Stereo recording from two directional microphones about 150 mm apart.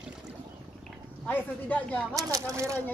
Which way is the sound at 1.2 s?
10° left (ahead or behind).